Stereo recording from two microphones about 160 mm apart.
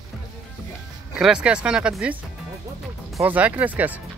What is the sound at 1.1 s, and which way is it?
Speech, 5° right (ahead or behind).